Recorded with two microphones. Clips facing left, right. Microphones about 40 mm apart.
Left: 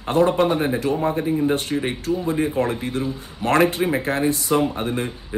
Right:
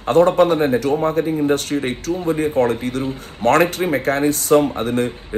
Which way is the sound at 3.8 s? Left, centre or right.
Centre.